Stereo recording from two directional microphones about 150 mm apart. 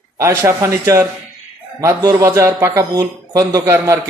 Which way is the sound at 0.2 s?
15° right (ahead or behind).